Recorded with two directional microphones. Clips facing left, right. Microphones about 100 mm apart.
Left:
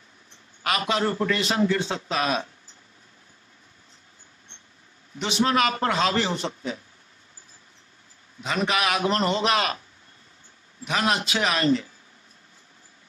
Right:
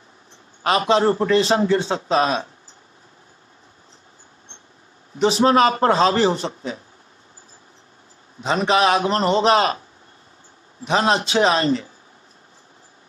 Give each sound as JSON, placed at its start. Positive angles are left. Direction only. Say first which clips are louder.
{"t": 0.6, "sound": "a man's voice", "louder": "right 7 dB", "side_deg": -30}
{"t": 5.1, "sound": "a man's voice", "louder": "right 7 dB", "side_deg": -35}
{"t": 8.4, "sound": "a man's voice", "louder": "right 7 dB", "side_deg": -30}